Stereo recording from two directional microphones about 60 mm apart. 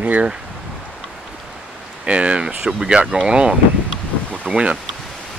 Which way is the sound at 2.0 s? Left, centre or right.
Centre.